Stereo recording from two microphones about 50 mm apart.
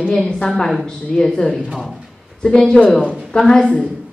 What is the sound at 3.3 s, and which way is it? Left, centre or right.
Speech, centre.